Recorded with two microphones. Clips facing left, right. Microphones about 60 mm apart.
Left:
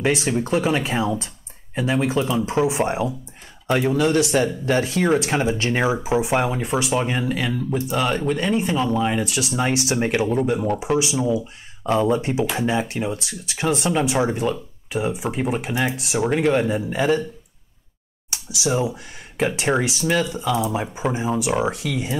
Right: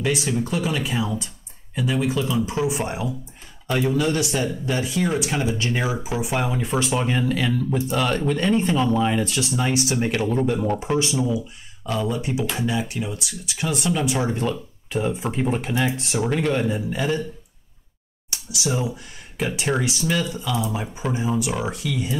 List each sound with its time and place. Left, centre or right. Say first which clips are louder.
0.0 s speech: left 2 dB; left
10.3 s speech: left 1 dB; centre
11.8 s speech: left 6 dB; left
18.3 s speech: left 3 dB; left